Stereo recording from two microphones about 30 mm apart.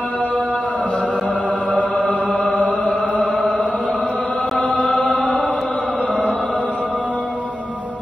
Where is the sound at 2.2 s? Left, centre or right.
Centre.